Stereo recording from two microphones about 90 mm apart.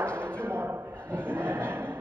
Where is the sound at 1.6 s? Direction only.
15° left (ahead or behind).